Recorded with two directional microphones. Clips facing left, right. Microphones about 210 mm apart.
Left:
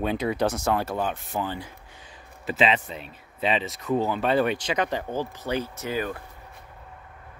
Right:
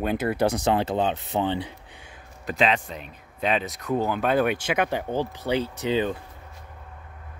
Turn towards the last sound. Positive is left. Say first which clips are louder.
# right 5 dB
turn(degrees=-20)  # may be behind; listen again after turning